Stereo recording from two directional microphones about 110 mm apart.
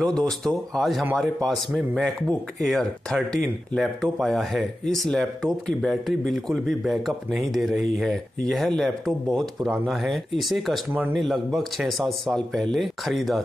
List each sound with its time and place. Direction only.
0.0 s a man's voice: 5° left (ahead or behind)
10.9 s speech: 20° right (ahead or behind)
11.1 s a man's voice: centre (ahead or behind)